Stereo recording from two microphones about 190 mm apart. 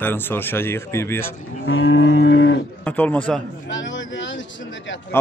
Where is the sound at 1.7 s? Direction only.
90° left.